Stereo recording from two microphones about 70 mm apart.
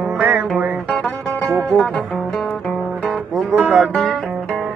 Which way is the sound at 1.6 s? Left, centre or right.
Centre.